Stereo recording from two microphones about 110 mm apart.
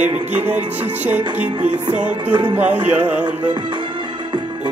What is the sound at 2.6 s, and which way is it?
Music, 15° right (ahead or behind).